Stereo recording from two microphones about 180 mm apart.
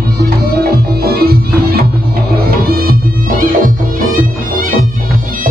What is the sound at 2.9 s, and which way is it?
Music, 55° right (ahead or behind).